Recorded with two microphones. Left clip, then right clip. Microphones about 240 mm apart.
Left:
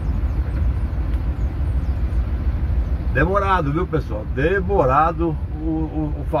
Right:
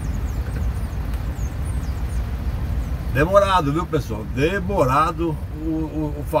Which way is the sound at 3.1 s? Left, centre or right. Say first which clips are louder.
Right 2 dB; right.